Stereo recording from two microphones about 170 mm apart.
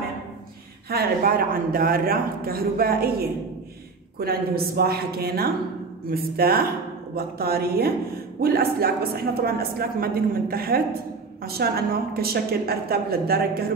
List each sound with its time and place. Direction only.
0.8 s a woman's voice: 60° right (ahead or behind)